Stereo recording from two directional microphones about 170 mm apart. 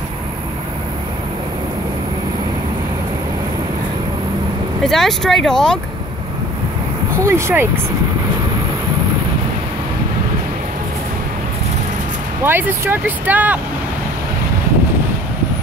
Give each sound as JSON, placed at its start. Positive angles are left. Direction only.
{"t": 4.8, "sound": "speech", "side_deg": 0}
{"t": 7.2, "sound": "speech", "side_deg": -15}
{"t": 12.4, "sound": "speech", "side_deg": -15}